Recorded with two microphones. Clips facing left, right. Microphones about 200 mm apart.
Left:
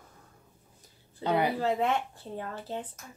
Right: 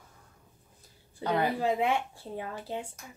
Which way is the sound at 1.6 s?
10° right (ahead or behind).